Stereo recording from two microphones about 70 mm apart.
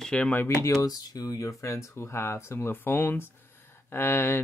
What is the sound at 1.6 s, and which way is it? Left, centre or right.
Speech, left.